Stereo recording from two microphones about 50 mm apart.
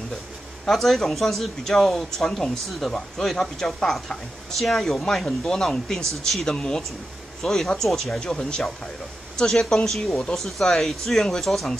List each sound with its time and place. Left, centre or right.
0.7 s speech: centre